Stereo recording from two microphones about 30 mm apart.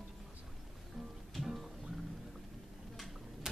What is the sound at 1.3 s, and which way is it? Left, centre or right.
Music, centre.